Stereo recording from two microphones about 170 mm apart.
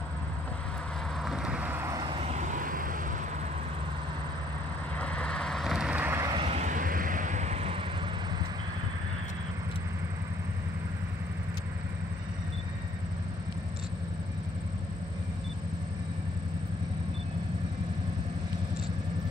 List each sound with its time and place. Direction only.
1.2 s vehicle: 5° right (ahead or behind); by 3.0 s 55° right (ahead or behind)
4.9 s vehicle: 5° left (ahead or behind); by 6.3 s 15° right (ahead or behind)
6.3 s vehicle: 35° right (ahead or behind)